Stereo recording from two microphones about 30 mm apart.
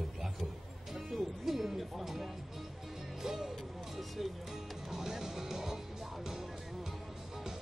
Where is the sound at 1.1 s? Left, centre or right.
Centre.